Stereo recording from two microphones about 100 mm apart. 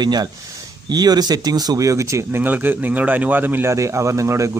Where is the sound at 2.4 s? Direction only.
20° right (ahead or behind).